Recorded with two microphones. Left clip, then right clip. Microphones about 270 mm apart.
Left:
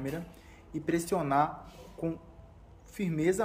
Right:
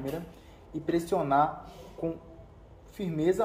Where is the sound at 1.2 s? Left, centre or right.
Left.